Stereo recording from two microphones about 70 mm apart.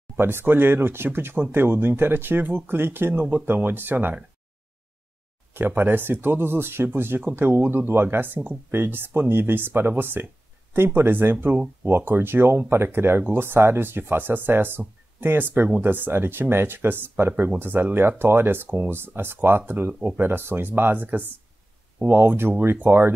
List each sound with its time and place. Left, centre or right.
0.2 s speech: right
5.5 s speech: right